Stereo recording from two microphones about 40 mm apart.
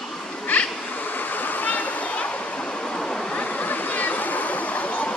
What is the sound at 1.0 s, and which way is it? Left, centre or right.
Waterfall, left.